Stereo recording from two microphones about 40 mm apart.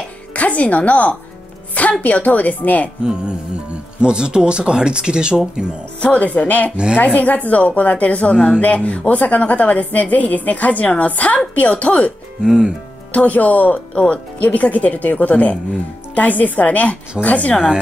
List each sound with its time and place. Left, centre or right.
0.3 s a woman's voice: left
3.0 s speech: right
5.9 s a woman's voice: left
12.4 s speech: right
13.1 s speech: left
13.9 s speech: left
14.4 s a woman's voice: left